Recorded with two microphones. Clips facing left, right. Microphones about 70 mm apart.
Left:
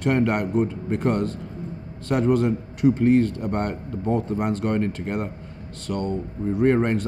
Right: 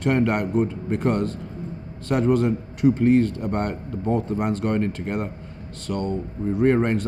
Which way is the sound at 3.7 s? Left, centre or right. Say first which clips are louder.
Even; right.